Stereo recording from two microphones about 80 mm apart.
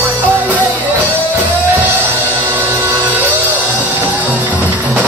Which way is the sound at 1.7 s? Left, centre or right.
Right.